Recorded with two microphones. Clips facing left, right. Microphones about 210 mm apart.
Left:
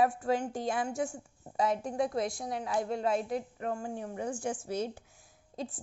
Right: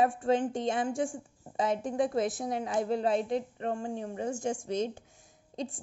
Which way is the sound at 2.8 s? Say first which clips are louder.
Right 3 dB; 30° right (ahead or behind).